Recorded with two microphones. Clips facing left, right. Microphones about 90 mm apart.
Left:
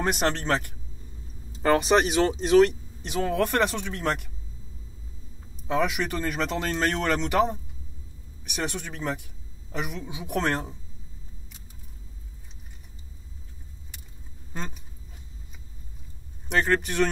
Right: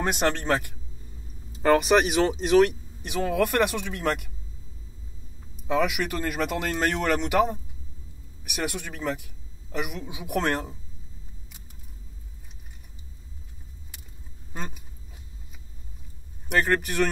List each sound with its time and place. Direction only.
0.0 s speech: 5° right (ahead or behind)
5.8 s speech: 30° left (ahead or behind)
6.1 s speech: 5° right (ahead or behind)
8.7 s a man's voice: 5° right (ahead or behind)
10.3 s speech: 30° left (ahead or behind)
14.5 s speech: 5° right (ahead or behind)
16.4 s speech: 5° right (ahead or behind)